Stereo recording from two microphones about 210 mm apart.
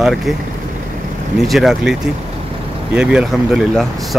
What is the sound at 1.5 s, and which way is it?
Speech, centre (ahead or behind).